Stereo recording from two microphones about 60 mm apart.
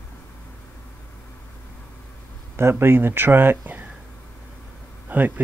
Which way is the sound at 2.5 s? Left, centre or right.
Right.